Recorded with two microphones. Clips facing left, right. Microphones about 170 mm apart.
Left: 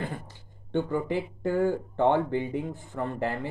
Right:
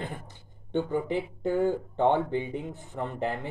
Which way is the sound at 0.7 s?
20° right (ahead or behind).